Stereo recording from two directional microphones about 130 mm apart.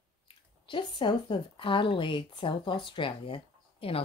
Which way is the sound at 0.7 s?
40° left (ahead or behind).